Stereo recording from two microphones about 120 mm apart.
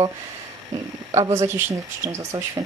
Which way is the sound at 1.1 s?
25° right (ahead or behind).